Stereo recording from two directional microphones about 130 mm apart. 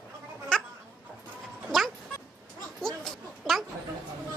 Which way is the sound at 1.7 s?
Centre (ahead or behind).